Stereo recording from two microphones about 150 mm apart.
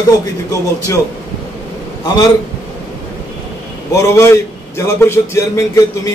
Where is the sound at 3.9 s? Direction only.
20° left (ahead or behind).